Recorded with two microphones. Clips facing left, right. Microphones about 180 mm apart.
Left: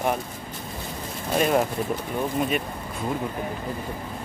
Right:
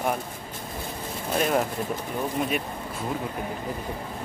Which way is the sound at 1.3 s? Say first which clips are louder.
Left 3 dB; 5° left (ahead or behind).